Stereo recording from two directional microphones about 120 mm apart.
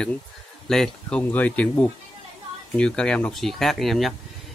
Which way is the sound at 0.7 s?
5° left (ahead or behind).